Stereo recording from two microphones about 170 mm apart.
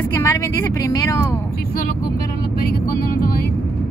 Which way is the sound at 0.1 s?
15° left (ahead or behind).